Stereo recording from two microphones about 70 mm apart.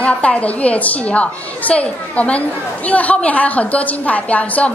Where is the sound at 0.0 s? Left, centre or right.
Centre.